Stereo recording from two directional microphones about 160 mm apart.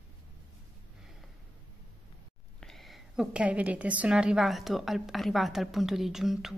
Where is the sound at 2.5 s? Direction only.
Centre (ahead or behind).